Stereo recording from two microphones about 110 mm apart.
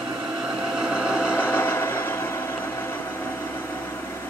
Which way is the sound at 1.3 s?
20° left (ahead or behind).